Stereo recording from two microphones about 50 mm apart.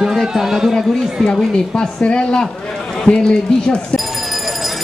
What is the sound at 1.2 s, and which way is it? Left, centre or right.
A woman's voice, centre.